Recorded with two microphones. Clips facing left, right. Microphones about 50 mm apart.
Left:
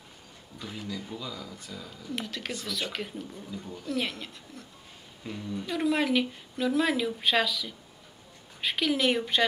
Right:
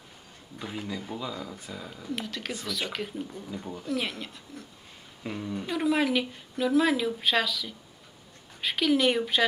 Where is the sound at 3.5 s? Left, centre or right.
Right.